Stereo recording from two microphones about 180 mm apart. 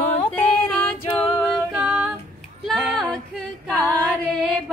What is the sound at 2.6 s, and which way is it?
A capella, centre (ahead or behind).